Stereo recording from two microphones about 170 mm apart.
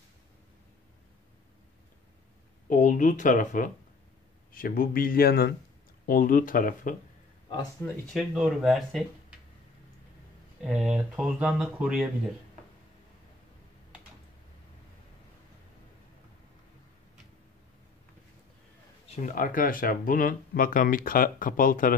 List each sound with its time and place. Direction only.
2.7 s speech: 50° left (ahead or behind); by 5.5 s 65° left (ahead or behind)
6.0 s speech: 55° left (ahead or behind)
7.8 s speech: centre (ahead or behind)
10.6 s speech: 5° right (ahead or behind)
19.0 s speech: 50° left (ahead or behind)